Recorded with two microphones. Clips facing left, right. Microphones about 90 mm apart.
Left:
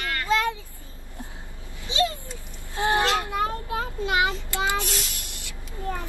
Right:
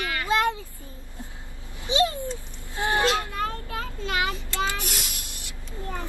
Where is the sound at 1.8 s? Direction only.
20° right (ahead or behind).